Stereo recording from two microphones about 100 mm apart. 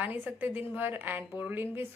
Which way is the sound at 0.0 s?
15° right (ahead or behind).